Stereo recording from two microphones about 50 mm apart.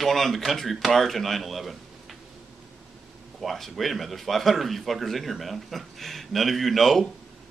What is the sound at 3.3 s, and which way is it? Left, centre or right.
Speech, centre.